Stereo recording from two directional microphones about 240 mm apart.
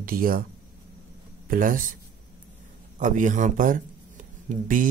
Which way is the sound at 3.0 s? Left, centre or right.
Right.